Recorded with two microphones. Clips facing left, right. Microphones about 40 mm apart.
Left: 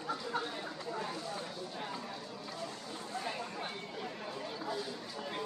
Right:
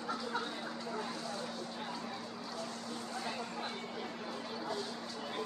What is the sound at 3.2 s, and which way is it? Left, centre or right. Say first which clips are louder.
Speech: left 2 dB; centre.